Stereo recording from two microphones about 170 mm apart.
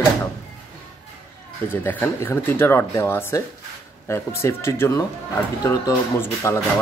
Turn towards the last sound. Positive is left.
turn(degrees=15)  # may be behind; listen again after turning